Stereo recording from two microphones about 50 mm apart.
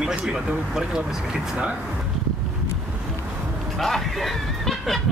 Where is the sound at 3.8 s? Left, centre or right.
Centre.